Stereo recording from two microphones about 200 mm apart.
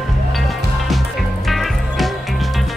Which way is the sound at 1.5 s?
Centre (ahead or behind).